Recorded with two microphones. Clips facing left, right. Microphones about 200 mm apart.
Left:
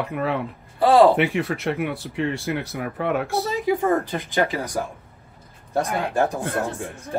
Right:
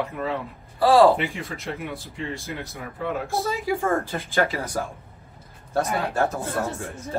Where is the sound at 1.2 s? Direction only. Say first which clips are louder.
Left 8 dB; 70° left (ahead or behind).